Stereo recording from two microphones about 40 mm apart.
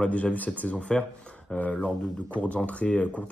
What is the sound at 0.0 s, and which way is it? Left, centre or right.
Speech, left.